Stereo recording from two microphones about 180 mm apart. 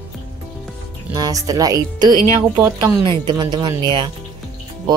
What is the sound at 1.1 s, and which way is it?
Speech, 20° right (ahead or behind).